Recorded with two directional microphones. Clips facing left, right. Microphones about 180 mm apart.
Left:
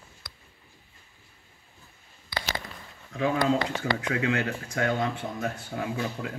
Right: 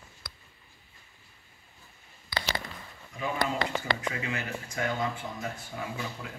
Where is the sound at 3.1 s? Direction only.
80° left.